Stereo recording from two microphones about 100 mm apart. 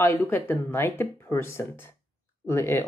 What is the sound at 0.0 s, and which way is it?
Speech, 25° left (ahead or behind).